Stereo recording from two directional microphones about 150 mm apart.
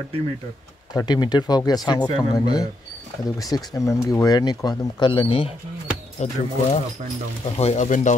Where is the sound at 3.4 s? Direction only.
25° left (ahead or behind).